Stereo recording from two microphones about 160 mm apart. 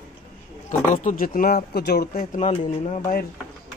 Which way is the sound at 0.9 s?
55° left (ahead or behind).